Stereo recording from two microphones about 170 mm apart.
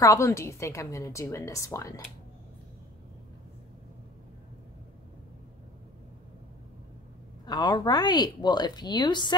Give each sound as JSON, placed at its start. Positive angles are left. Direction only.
{"t": 0.0, "sound": "a woman's voice", "side_deg": 20}
{"t": 7.4, "sound": "speech", "side_deg": 25}